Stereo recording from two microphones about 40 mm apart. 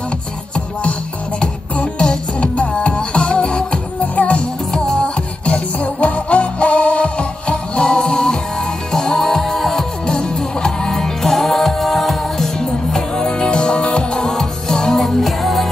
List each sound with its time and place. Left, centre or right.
2.4 s music: left
4.0 s music: left
4.7 s music: centre
5.0 s music: left; by 9.8 s centre
10.0 s music: centre
10.9 s music: centre
12.5 s music: centre